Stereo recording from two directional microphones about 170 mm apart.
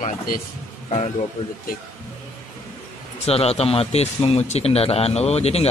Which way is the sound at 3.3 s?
35° left (ahead or behind).